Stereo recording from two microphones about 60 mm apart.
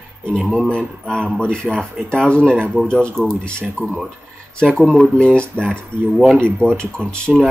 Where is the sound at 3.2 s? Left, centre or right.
Centre.